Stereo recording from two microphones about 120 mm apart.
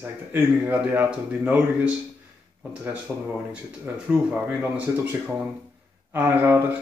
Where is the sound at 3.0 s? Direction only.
10° right (ahead or behind).